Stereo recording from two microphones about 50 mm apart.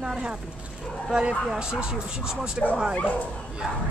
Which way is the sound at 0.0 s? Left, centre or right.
Centre.